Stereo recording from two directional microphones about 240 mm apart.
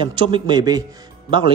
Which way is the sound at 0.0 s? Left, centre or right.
Right.